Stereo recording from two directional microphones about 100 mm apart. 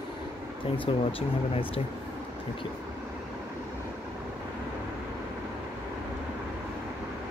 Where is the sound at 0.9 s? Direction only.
70° left (ahead or behind).